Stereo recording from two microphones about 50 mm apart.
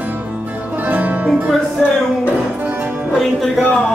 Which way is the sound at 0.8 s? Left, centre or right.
Right.